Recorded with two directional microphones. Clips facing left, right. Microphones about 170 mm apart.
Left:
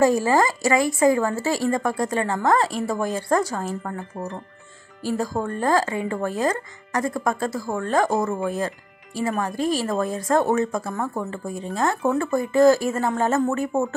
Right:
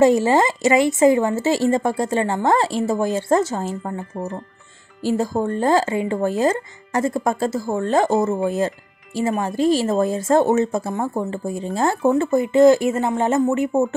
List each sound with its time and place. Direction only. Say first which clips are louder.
0.0 s speech: right 3 dB; 25° right (ahead or behind)